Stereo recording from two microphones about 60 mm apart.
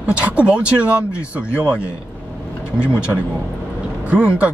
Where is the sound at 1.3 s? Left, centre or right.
Right.